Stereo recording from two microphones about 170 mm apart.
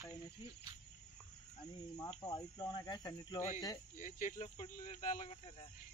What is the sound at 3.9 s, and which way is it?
Speech, 50° left (ahead or behind).